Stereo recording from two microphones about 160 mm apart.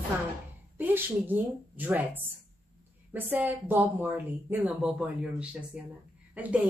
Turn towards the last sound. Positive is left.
turn(degrees=-10)  # may be behind; listen again after turning